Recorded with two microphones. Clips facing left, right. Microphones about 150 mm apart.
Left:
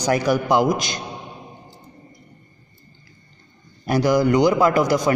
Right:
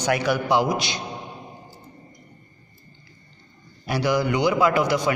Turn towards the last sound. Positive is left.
turn(degrees=40)  # may be behind; listen again after turning